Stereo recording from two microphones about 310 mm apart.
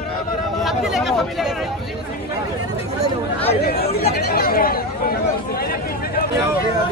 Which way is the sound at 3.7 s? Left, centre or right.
Left.